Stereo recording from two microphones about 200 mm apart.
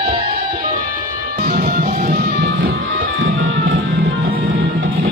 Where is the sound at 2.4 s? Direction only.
60° right (ahead or behind).